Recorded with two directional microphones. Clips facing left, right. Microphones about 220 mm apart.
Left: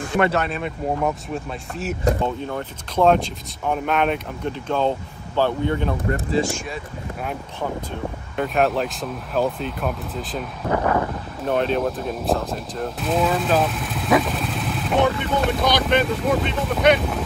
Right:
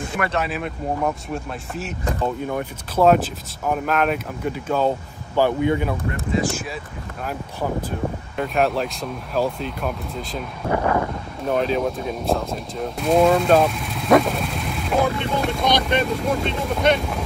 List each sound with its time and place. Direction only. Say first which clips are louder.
0.3 s speech: left 1 dB; centre (ahead or behind)
6.3 s speech: left 1 dB; 30° left (ahead or behind)
8.4 s speech: left 1 dB; centre (ahead or behind)
10.7 s a sound: even; 15° right (ahead or behind)
11.4 s speech: even; centre (ahead or behind)